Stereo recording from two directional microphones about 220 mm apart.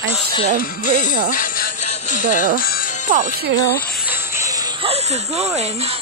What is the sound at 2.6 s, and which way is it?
Speech, 40° left (ahead or behind).